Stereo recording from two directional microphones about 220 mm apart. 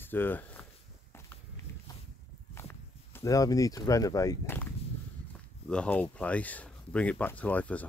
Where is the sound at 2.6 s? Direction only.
10° left (ahead or behind).